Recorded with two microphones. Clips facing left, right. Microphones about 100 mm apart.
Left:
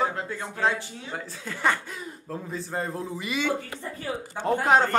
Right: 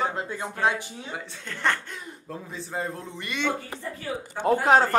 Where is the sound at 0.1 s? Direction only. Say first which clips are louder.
Right 1 dB; 20° right (ahead or behind).